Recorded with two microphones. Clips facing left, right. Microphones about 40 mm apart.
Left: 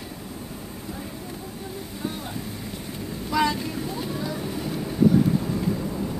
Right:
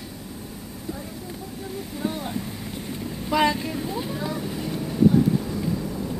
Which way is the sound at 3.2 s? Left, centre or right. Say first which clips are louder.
Right 2 dB; right.